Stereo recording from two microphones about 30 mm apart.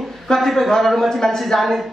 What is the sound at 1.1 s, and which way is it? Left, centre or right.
Speech, centre.